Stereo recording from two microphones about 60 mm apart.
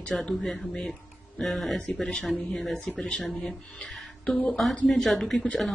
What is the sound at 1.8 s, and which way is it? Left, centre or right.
Speech, centre.